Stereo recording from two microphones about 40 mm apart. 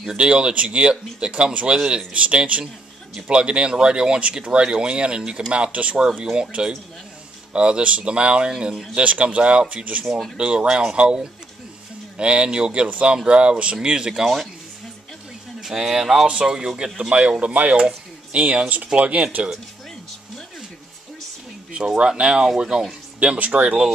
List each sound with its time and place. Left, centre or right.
0.1 s speech: right
7.5 s speech: right
8.9 s speech: right
10.0 s speech: centre
10.3 s speech: right
14.2 s speech: centre
15.6 s speech: centre
16.3 s speech: right
17.1 s speech: right
21.8 s speech: centre
23.1 s speech: right